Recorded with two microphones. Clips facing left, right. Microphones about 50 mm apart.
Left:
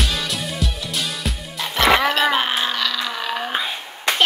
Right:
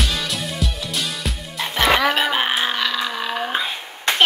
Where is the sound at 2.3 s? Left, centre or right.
Centre.